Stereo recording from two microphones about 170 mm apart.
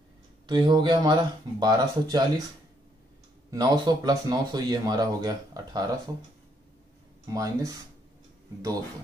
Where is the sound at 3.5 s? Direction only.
20° right (ahead or behind).